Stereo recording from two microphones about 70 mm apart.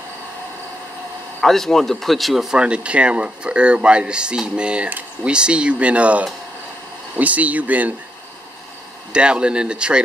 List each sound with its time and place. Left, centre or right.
1.4 s speech: centre
4.8 s speech: right
5.3 s speech: centre
9.1 s speech: centre